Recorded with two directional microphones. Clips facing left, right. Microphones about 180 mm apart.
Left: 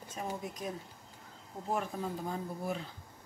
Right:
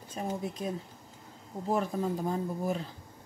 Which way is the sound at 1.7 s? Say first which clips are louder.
Right 6 dB; 40° right (ahead or behind).